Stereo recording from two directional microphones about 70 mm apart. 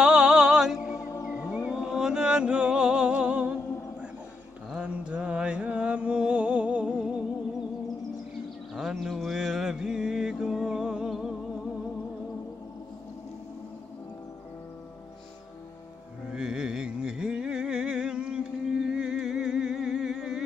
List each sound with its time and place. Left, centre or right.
0.0 s music: centre
1.5 s a sound: centre
4.6 s mantra: centre
8.7 s mantra: centre
16.3 s music: centre